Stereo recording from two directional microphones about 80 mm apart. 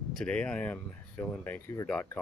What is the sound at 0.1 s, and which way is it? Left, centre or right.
Speech, centre.